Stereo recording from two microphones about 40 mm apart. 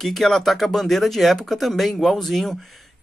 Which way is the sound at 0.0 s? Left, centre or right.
Centre.